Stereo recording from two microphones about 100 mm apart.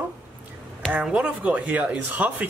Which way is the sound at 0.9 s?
10° right (ahead or behind).